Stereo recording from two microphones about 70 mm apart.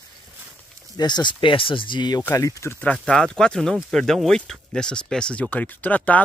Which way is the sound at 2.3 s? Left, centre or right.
Left.